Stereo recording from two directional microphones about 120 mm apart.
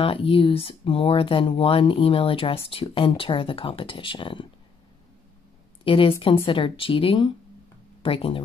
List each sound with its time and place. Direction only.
0.0 s speech: 50° left (ahead or behind)
5.9 s speech: 45° left (ahead or behind)